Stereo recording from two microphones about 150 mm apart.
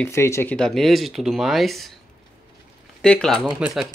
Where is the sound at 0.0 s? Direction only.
20° left (ahead or behind).